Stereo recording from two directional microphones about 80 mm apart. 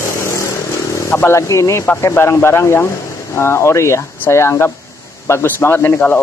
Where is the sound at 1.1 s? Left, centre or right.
Left.